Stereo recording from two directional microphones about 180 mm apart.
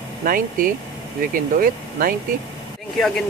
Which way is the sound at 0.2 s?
50° right (ahead or behind).